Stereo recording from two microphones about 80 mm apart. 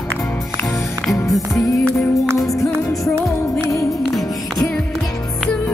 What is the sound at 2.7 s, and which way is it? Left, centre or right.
Music, centre.